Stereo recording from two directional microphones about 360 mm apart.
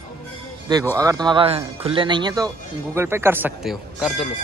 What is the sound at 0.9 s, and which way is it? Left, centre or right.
Speech, centre.